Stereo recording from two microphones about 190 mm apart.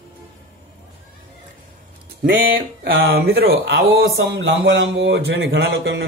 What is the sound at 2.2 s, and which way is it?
Speech, 80° right.